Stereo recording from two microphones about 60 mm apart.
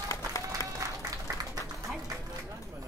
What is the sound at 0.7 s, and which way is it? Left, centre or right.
Applause, right.